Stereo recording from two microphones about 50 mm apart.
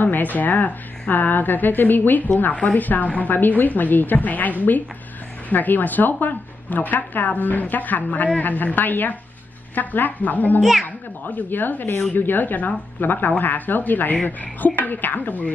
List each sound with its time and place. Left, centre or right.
0.0 s a woman's voice: left
10.6 s a child's voice: centre
11.2 s a woman's voice: left